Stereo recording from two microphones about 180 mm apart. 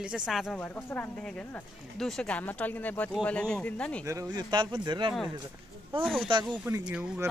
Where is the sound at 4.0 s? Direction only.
15° right (ahead or behind).